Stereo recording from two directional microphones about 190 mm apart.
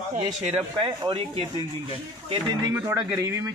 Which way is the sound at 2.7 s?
15° right (ahead or behind).